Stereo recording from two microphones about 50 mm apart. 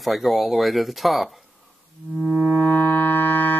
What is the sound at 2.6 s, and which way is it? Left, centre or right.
Music, left.